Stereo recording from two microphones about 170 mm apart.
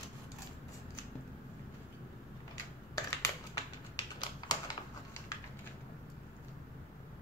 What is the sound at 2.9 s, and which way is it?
Typing, 20° left (ahead or behind).